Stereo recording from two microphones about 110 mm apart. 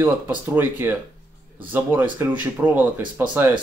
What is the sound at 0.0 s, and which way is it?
Speech, 20° right (ahead or behind).